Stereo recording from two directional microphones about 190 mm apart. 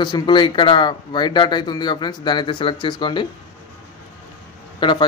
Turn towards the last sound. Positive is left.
turn(degrees=25)  # may be behind; listen again after turning